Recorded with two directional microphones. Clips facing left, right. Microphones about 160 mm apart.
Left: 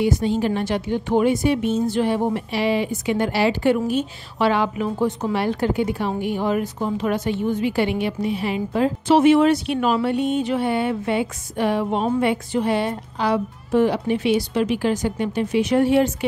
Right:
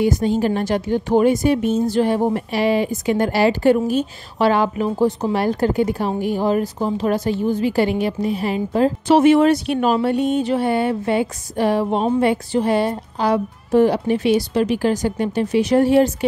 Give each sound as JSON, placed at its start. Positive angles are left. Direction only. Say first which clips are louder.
{"t": 0.0, "sound": "a woman's voice", "louder": "right 2 dB", "side_deg": -45}